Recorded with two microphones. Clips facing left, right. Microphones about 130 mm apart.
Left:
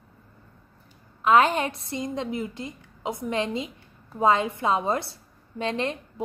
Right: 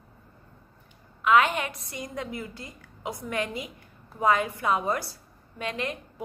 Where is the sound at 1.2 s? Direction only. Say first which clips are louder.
Left 2 dB; 30° left (ahead or behind).